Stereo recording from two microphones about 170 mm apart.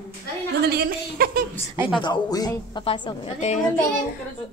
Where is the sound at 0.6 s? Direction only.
65° right (ahead or behind).